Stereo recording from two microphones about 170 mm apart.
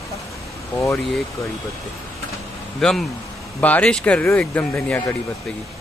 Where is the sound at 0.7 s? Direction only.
10° left (ahead or behind).